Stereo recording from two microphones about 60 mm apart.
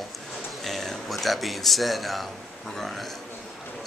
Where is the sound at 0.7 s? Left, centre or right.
Centre.